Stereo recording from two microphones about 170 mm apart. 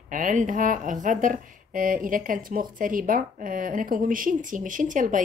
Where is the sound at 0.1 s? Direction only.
50° right (ahead or behind).